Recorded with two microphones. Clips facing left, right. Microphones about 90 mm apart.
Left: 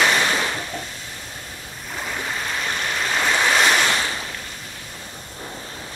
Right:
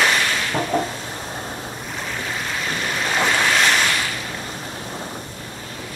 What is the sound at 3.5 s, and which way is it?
Ocean, 10° left (ahead or behind).